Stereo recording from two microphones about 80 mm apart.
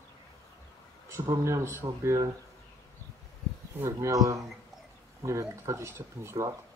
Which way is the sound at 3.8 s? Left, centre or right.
Right.